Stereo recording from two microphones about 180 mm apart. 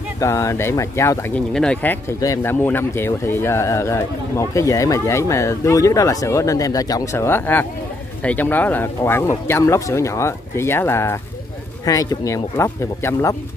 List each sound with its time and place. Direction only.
0.2 s speech: 15° left (ahead or behind)
1.5 s speech: 5° left (ahead or behind)